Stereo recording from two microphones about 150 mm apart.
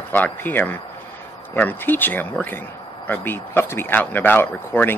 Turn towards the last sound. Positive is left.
turn(degrees=15)  # may be behind; listen again after turning